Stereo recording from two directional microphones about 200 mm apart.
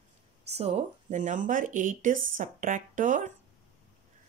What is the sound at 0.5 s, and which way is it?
Speech, 30° right (ahead or behind).